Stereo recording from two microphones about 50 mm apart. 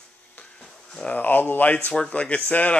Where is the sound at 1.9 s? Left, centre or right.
Left.